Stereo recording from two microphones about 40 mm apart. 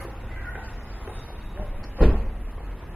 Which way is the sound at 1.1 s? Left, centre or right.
Right.